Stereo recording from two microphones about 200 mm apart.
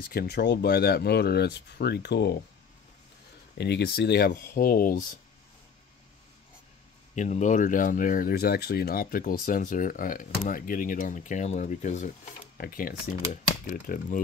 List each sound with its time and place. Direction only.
0.1 s speech: 50° left (ahead or behind)
3.5 s speech: 55° left (ahead or behind)
7.2 s speech: 35° left (ahead or behind)